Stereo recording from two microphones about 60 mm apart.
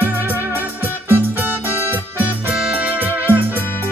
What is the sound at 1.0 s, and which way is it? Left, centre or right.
Music, right.